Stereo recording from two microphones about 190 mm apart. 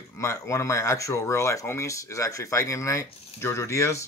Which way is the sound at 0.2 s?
15° left (ahead or behind).